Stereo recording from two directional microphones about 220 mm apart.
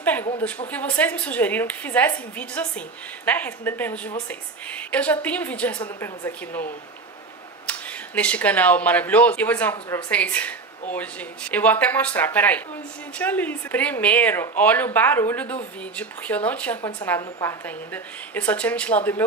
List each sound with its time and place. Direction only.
0.0 s a sound: 5° left (ahead or behind)
0.7 s speech: 5° left (ahead or behind)
7.6 s speech: 5° left (ahead or behind)